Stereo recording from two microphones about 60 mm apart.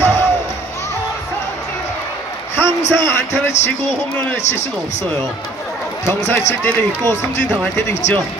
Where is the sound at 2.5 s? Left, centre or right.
Left.